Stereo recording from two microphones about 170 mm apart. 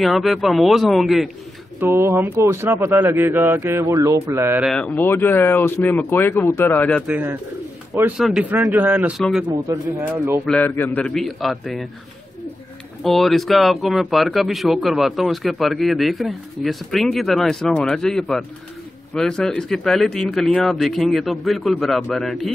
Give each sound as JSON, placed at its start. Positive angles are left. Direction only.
{"t": 0.0, "sound": "speech", "side_deg": 0}
{"t": 1.8, "sound": "a man's voice", "side_deg": -15}
{"t": 4.6, "sound": "speech", "side_deg": 5}
{"t": 7.1, "sound": "a man's voice", "side_deg": -10}
{"t": 9.5, "sound": "a man's voice", "side_deg": -20}
{"t": 10.4, "sound": "speech", "side_deg": 10}
{"t": 13.0, "sound": "speech", "side_deg": 0}